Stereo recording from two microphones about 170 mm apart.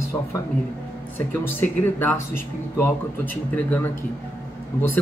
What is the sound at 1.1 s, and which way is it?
Speech, 10° left (ahead or behind).